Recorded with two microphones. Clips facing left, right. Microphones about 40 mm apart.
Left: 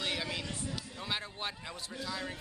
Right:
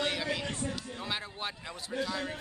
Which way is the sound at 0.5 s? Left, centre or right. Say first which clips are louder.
Right 5 dB; right.